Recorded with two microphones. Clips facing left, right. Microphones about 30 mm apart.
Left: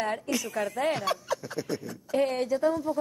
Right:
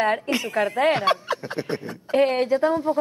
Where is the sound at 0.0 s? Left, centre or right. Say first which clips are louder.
Right 7 dB; right.